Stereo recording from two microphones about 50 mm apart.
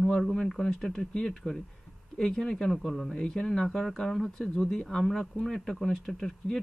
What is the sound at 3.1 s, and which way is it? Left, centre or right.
Speech, centre.